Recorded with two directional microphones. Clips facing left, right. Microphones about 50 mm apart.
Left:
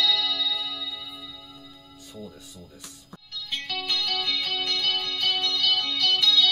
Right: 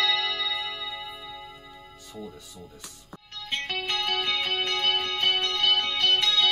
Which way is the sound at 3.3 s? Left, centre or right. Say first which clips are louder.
Right 1 dB; right.